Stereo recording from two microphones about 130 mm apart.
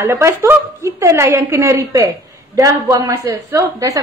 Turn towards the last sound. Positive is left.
turn(degrees=-25)  # may be behind; listen again after turning